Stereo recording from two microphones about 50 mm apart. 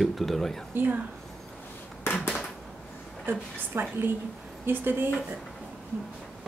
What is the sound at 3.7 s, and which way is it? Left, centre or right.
A woman's voice, right.